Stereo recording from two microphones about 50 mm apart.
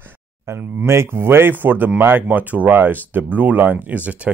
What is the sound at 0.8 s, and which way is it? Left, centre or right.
Speech, right.